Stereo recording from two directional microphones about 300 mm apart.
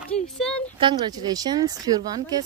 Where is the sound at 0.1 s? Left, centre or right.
Centre.